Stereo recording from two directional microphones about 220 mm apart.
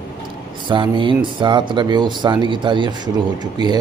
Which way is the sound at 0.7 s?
20° right (ahead or behind).